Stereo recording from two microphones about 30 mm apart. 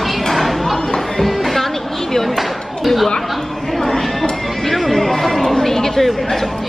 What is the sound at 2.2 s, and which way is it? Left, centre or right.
Speech, centre.